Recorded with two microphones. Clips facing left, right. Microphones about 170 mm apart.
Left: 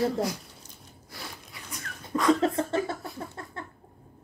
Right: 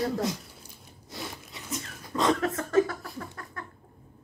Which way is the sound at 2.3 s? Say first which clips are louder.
Right 1 dB; 25° left (ahead or behind).